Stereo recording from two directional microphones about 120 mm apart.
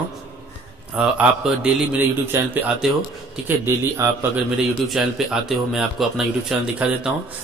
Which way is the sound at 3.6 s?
20° right (ahead or behind).